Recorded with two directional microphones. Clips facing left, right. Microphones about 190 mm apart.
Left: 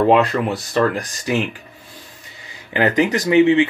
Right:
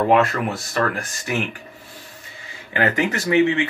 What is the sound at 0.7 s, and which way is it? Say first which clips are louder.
Speech: left 6 dB; 20° left (ahead or behind).